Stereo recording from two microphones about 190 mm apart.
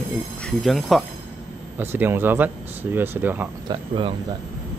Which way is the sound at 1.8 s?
10° right (ahead or behind).